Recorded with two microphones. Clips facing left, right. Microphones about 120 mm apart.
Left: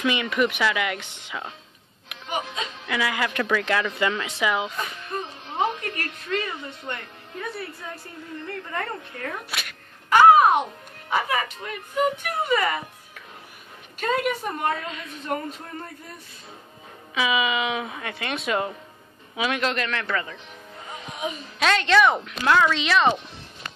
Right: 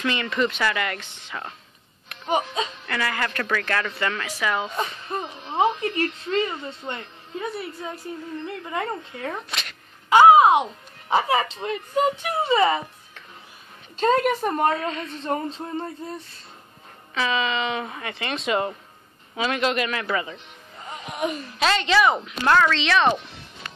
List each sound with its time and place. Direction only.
0.0 s a woman's voice: 10° left (ahead or behind)
2.2 s a woman's voice: 35° right (ahead or behind)
2.9 s a woman's voice: 10° left (ahead or behind)
5.1 s music: 30° right (ahead or behind)
5.6 s a woman's voice: 25° right (ahead or behind)
8.6 s a woman's voice: 15° right (ahead or behind)
9.5 s a sound: 5° left (ahead or behind)
10.0 s speech: 20° right (ahead or behind)
11.1 s a woman's voice: 30° right (ahead or behind)
13.9 s a woman's voice: 35° right (ahead or behind)
14.9 s a woman's voice: 5° left (ahead or behind)
15.2 s a woman's voice: 25° right (ahead or behind)
17.1 s speech: 10° left (ahead or behind); by 20.3 s 10° right (ahead or behind)
21.5 s speech: centre (ahead or behind)